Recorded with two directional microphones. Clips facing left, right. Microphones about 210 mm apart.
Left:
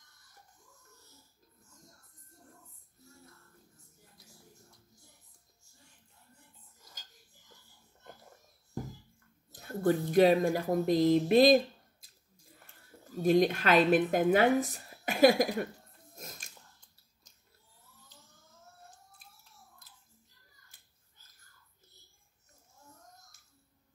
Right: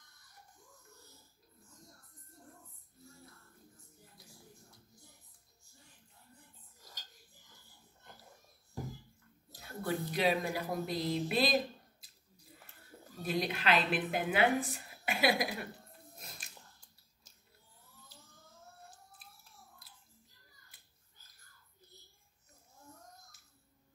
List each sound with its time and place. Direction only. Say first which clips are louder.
9.5 s a sound: left 9 dB; 50° left (ahead or behind)
10.5 s a woman's voice: left 8 dB; 45° left (ahead or behind)
13.2 s a woman's voice: left 9 dB; 45° left (ahead or behind)
16.2 s biting: left 7 dB; 45° left (ahead or behind)